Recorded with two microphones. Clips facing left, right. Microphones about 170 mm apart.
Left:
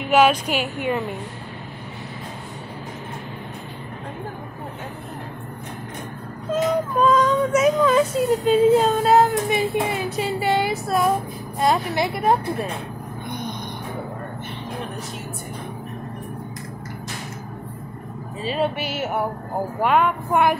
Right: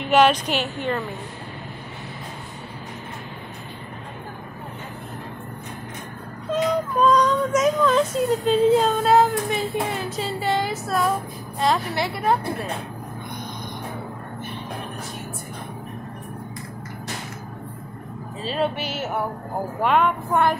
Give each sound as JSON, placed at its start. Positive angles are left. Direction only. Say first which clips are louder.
{"t": 0.0, "sound": "speech", "louder": "even", "side_deg": 5}
{"t": 6.5, "sound": "a sound", "louder": "left 1 dB", "side_deg": 5}
{"t": 8.5, "sound": "speech", "louder": "left 2 dB", "side_deg": 5}
{"t": 9.5, "sound": "a woman's voice", "louder": "left 3 dB", "side_deg": 10}
{"t": 18.4, "sound": "speech", "louder": "left 1 dB", "side_deg": 10}